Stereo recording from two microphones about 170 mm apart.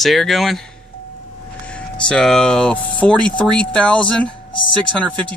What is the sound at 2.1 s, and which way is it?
Speech, 5° left (ahead or behind).